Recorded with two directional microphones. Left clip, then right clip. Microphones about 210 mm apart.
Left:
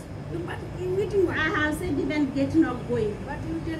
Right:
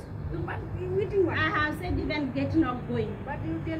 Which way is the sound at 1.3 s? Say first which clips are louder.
Left 2 dB; 30° right (ahead or behind).